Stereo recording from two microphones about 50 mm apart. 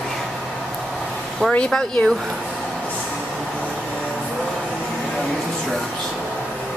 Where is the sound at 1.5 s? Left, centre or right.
Left.